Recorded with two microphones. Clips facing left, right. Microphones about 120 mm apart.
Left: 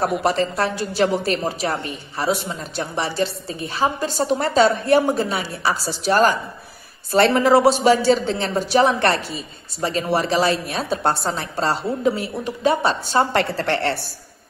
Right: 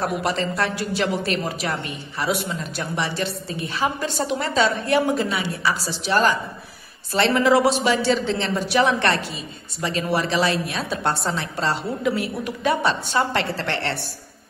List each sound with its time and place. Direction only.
0.2 s a woman's voice: 40° left (ahead or behind)
13.1 s a woman's voice: 45° left (ahead or behind)